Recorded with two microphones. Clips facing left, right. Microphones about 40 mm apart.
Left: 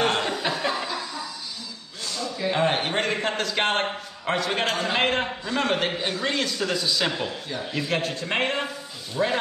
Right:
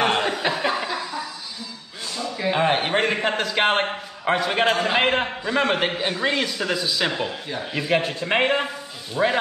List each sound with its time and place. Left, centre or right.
0.0 s chuckle: centre
2.3 s a man's voice: centre